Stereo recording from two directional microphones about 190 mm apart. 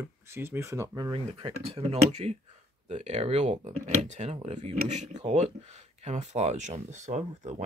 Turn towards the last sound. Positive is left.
turn(degrees=-35)  # may be behind; listen again after turning